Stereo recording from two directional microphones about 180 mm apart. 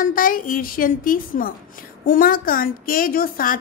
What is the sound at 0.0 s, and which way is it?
A woman's voice, 50° left (ahead or behind).